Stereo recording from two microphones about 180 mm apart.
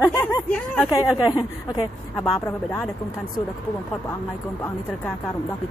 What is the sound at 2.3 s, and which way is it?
Speech, 5° left (ahead or behind).